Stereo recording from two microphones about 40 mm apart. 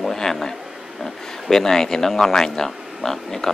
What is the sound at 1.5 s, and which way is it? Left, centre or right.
Speech, centre.